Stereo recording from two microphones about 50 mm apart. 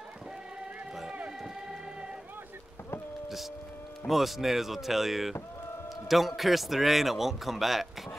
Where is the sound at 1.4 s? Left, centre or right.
Centre.